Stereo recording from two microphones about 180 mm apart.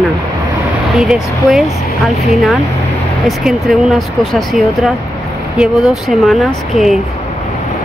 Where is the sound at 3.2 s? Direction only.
Centre (ahead or behind).